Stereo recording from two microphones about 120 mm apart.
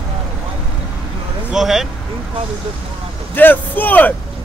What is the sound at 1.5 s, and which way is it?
Speech, 5° right (ahead or behind).